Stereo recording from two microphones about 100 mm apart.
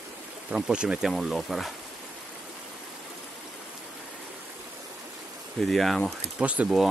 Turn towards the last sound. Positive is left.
turn(degrees=-15)  # may be behind; listen again after turning